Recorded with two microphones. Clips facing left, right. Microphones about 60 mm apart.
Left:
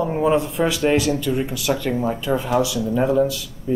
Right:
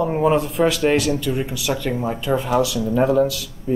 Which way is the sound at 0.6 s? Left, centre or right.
Centre.